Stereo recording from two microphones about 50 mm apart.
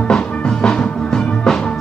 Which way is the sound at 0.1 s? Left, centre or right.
Centre.